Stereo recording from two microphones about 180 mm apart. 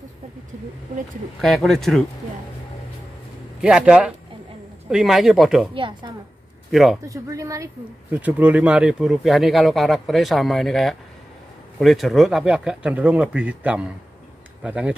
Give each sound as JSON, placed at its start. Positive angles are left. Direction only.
{"t": 1.4, "sound": "speech", "side_deg": 0}
{"t": 3.6, "sound": "speech", "side_deg": -5}
{"t": 5.8, "sound": "a woman's voice", "side_deg": -25}
{"t": 6.7, "sound": "speech", "side_deg": 0}
{"t": 7.1, "sound": "speech", "side_deg": -20}